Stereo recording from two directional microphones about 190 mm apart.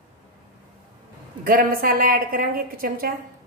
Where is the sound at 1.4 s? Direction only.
50° right (ahead or behind).